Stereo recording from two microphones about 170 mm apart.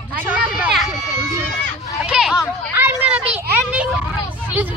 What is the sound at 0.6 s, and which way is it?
Run, centre (ahead or behind).